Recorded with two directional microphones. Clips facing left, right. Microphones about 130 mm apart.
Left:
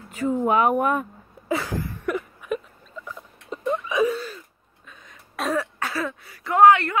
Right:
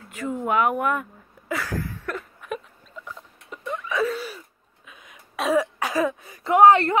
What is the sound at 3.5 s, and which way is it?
Wail, 25° left (ahead or behind).